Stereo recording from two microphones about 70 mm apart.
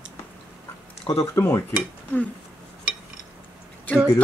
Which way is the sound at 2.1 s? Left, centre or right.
Left.